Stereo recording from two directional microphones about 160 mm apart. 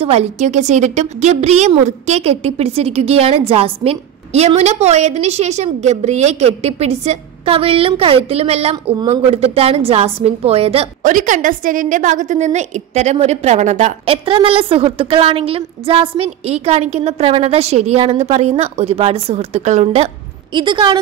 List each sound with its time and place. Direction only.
0.0 s a woman's voice: 40° right (ahead or behind)
11.0 s a woman's voice: 55° right (ahead or behind)
20.5 s a woman's voice: 30° right (ahead or behind)